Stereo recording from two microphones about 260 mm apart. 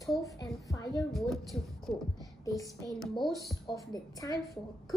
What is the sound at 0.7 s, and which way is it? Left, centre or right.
Speech, centre.